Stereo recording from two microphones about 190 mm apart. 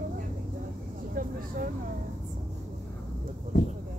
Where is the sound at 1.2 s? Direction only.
50° right (ahead or behind).